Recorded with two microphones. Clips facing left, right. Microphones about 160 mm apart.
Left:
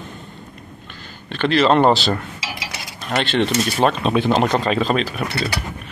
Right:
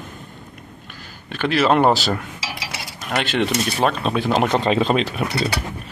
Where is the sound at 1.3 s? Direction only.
5° right (ahead or behind).